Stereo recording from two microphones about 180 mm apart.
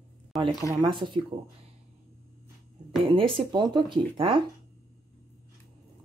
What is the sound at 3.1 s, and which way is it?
Speech, 30° right (ahead or behind).